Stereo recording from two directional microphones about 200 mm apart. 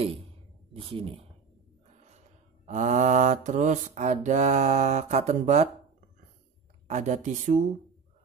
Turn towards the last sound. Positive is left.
turn(degrees=-35)  # may be behind; listen again after turning